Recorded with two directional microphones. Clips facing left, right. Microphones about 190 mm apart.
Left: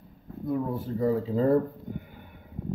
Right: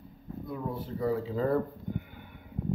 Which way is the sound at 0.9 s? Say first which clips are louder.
Left 4 dB; 35° left (ahead or behind).